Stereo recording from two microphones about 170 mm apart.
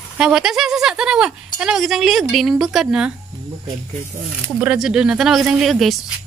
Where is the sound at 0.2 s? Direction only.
5° right (ahead or behind).